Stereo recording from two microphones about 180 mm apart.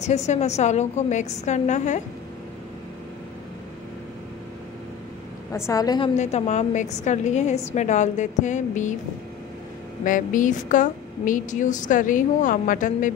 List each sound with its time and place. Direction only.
0.0 s a woman's voice: 40° left (ahead or behind)
5.7 s a woman's voice: 20° left (ahead or behind)
6.1 s a woman's voice: 40° left (ahead or behind)
10.0 s a woman's voice: 45° left (ahead or behind)